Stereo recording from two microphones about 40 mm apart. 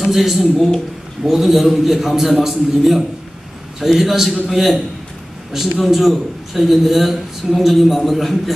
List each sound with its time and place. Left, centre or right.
0.1 s a man's voice: centre